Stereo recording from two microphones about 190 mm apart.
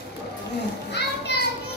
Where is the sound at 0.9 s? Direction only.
60° left (ahead or behind).